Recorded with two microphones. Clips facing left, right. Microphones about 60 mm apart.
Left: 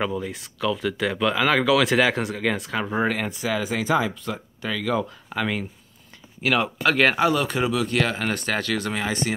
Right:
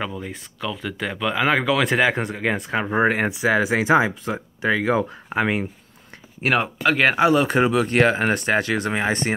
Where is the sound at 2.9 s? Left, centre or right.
Right.